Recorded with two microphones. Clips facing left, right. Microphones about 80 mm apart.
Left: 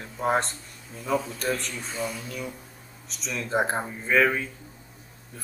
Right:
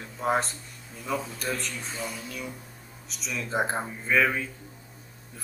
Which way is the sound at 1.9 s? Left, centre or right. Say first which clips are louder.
Left 4 dB; left.